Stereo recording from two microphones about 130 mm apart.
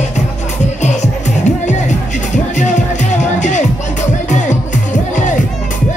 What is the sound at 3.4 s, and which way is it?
Music, 65° left (ahead or behind).